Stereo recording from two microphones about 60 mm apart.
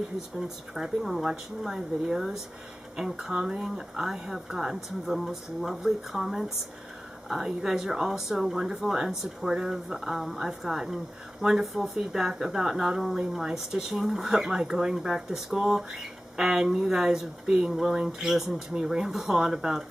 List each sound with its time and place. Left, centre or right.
0.4 s speech: centre